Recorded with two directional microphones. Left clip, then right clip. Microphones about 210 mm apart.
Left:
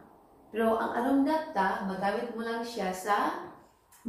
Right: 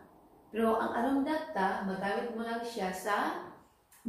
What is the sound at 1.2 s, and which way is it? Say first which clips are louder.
Speech: left 4 dB; centre (ahead or behind).